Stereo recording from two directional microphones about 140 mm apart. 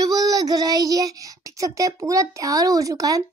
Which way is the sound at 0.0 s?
25° right (ahead or behind).